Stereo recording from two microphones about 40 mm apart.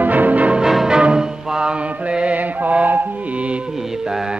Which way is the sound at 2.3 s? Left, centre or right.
Right.